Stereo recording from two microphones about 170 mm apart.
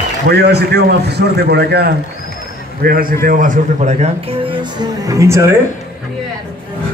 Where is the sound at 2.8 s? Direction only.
60° right (ahead or behind); by 5.5 s 15° right (ahead or behind).